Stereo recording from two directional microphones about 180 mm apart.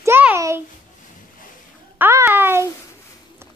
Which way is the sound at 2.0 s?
15° right (ahead or behind).